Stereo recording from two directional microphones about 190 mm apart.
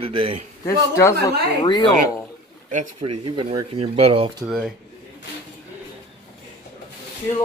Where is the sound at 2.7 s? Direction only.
30° right (ahead or behind).